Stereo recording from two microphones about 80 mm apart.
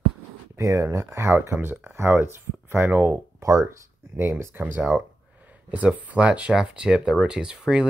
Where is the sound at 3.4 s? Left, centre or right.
Right.